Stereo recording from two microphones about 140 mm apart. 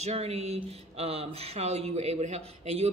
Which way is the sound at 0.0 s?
50° right (ahead or behind).